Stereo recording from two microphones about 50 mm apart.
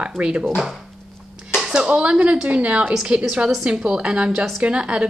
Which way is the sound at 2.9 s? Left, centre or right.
Centre.